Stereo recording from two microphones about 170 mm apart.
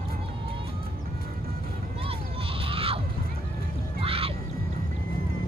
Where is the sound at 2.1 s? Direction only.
35° right (ahead or behind).